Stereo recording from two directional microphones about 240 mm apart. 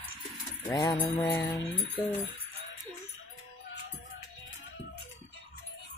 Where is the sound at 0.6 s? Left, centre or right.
Centre.